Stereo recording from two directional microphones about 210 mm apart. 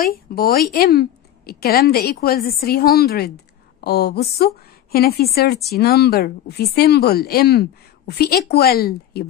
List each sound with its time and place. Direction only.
0.0 s a woman's voice: 45° left (ahead or behind)